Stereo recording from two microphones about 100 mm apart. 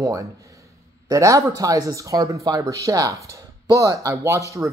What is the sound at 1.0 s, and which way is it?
Speech, 35° right (ahead or behind).